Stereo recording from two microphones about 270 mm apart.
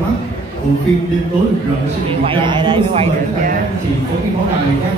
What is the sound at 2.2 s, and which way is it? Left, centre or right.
A man's voice, centre.